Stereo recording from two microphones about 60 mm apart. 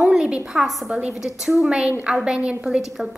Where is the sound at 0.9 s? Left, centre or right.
Centre.